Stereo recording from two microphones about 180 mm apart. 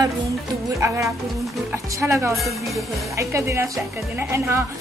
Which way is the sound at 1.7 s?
15° right (ahead or behind).